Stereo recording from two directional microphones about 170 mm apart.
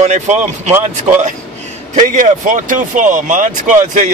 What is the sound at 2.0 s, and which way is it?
Speech, 50° right (ahead or behind).